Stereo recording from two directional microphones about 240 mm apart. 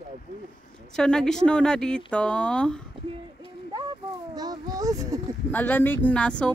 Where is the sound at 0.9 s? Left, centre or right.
Centre.